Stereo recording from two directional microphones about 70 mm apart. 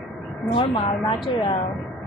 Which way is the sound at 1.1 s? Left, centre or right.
Left.